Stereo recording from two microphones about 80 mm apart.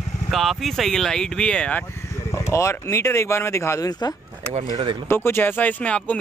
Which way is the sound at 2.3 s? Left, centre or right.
Left.